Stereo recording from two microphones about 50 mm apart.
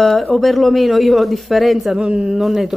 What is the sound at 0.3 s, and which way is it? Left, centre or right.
A woman's voice, centre.